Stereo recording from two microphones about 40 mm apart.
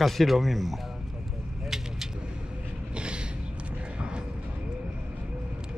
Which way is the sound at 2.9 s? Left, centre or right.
Right.